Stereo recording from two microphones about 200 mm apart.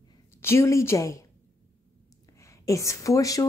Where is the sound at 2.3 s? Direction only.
15° left (ahead or behind).